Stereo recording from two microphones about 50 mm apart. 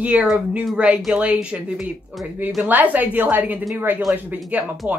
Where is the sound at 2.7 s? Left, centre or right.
Right.